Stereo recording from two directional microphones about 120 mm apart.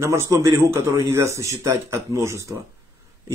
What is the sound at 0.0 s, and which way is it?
Speech, 25° right (ahead or behind).